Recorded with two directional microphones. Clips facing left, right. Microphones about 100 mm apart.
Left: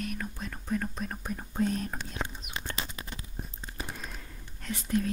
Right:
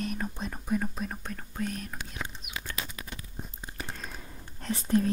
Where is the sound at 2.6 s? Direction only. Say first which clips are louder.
Left 1 dB; 30° left (ahead or behind).